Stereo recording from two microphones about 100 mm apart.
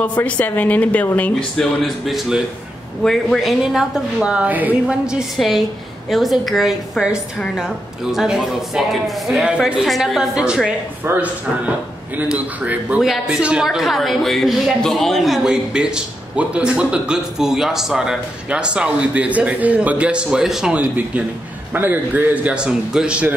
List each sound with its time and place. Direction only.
0.0 s speech: 15° left (ahead or behind)
1.6 s a man's voice: centre (ahead or behind)